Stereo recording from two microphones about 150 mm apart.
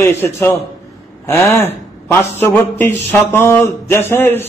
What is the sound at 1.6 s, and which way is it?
A man's voice, 15° left (ahead or behind).